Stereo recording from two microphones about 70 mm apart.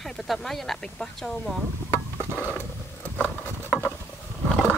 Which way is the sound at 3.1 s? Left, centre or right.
Left.